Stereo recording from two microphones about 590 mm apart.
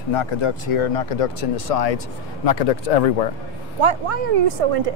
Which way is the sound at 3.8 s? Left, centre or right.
Right.